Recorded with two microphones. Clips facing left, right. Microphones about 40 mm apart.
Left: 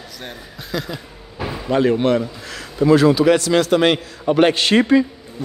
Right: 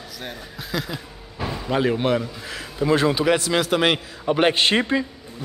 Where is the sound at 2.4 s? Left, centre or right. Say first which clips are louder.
Left 6 dB; centre.